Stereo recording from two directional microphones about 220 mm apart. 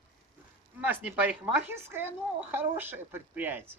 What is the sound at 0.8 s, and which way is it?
A woman's voice, 10° right (ahead or behind).